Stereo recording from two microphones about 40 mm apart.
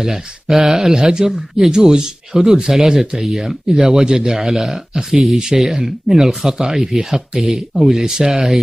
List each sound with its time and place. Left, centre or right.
0.0 s speech: centre